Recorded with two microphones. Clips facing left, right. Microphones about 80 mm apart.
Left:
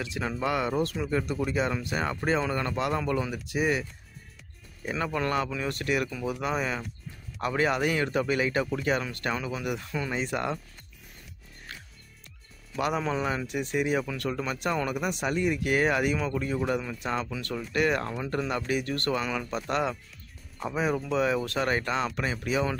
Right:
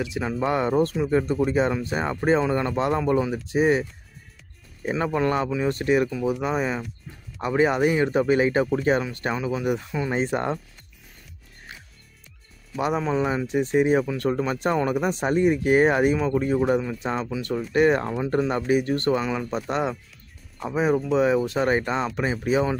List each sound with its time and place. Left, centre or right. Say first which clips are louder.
0.0 s speech: right 5 dB; centre
0.5 s speech: right 6 dB; right
4.9 s speech: right 5 dB; right
6.0 s speech: right 6 dB; centre
10.1 s speech: right 6 dB; right
13.0 s speech: right 5 dB; centre